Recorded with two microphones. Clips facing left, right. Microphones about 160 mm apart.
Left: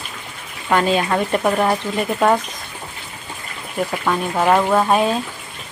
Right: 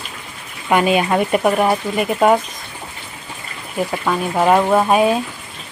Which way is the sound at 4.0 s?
5° right (ahead or behind).